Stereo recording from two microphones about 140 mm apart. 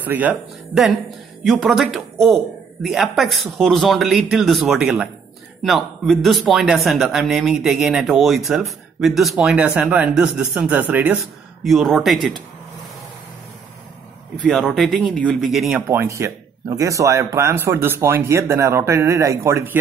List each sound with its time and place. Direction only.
0.0 s speech: 10° right (ahead or behind)
1.4 s a man's voice: centre (ahead or behind)
11.6 s a man's voice: centre (ahead or behind)
14.6 s a man's voice: centre (ahead or behind)
15.9 s a man's voice: 20° right (ahead or behind)